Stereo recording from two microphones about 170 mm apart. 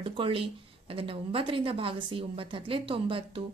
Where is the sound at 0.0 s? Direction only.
30° right (ahead or behind).